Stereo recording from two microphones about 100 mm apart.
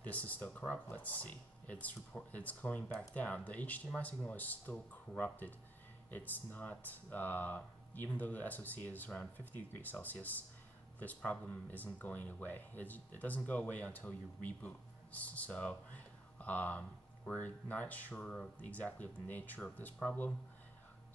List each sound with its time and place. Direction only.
0.0 s speech: 15° left (ahead or behind)